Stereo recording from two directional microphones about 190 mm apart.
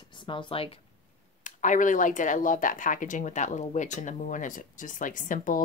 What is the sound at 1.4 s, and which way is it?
A woman's voice, 40° left (ahead or behind).